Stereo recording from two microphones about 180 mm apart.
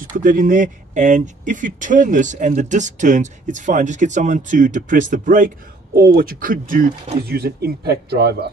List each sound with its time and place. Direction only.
0.2 s speech: 50° right (ahead or behind)